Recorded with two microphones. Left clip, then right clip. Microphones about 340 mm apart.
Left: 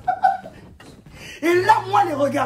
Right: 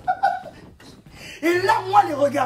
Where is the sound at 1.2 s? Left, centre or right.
Centre.